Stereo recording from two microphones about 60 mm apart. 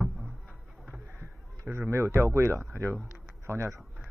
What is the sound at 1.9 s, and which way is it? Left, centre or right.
Speech, right.